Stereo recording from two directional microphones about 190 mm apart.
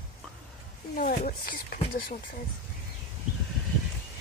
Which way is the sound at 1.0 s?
50° left (ahead or behind).